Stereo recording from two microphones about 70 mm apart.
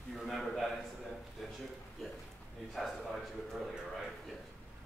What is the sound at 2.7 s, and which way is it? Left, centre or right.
Speech, centre.